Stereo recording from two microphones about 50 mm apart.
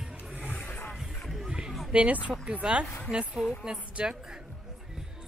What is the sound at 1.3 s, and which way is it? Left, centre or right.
Music, centre.